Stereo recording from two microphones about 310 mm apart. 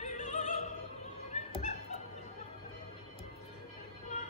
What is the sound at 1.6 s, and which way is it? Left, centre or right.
Fowl, left.